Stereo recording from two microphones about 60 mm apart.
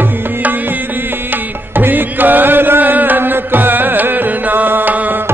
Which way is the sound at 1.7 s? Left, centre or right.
Right.